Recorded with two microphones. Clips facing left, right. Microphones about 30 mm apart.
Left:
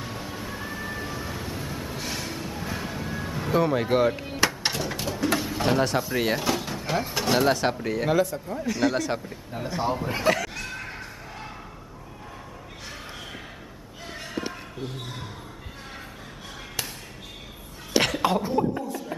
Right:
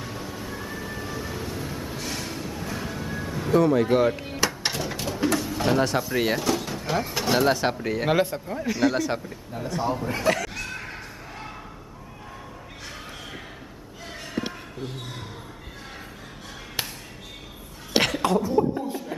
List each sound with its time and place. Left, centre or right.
0.0 s vehicle: centre
5.3 s bird: centre
5.6 s speech: centre
8.1 s a man's voice: right
8.5 s speech: centre
8.7 s speech: centre
9.5 s a man's voice: centre
10.3 s a sound: centre
18.5 s chuckle: centre